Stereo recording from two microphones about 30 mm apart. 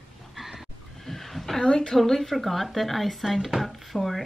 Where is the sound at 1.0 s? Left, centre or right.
Centre.